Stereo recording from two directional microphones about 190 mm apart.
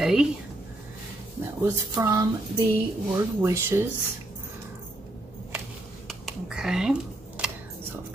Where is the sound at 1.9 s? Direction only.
15° right (ahead or behind).